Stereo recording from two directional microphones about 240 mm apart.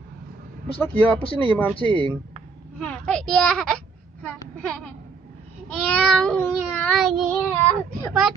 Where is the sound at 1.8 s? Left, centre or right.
Centre.